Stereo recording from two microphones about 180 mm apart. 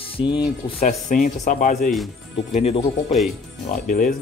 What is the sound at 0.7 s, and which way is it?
Speech, 45° left (ahead or behind).